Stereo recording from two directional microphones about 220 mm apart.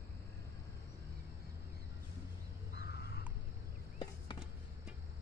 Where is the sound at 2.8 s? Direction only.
50° left (ahead or behind).